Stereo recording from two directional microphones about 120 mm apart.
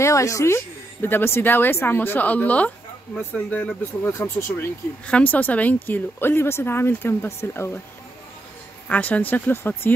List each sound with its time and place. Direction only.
0.0 s speech: 25° left (ahead or behind)
8.8 s speech: 10° left (ahead or behind)